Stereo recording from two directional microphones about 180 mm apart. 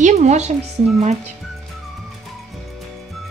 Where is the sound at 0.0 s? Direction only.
40° right (ahead or behind).